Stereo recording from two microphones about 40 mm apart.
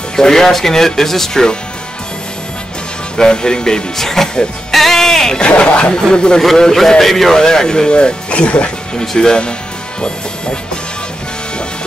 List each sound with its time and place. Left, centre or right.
0.1 s speech: centre
3.2 s speech: centre
4.7 s music: centre
5.6 s speech: left
6.4 s speech: centre; by 8.7 s left
8.9 s speech: centre